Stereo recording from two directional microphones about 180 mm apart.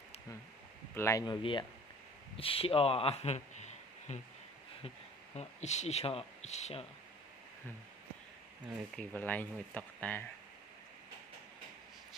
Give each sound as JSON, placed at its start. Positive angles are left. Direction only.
{"t": 0.9, "sound": "speech", "side_deg": 15}
{"t": 8.9, "sound": "speech", "side_deg": 10}